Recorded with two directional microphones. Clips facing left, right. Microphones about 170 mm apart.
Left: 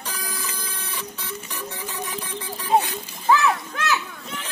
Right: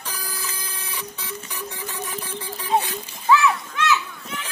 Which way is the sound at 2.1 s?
10° right (ahead or behind).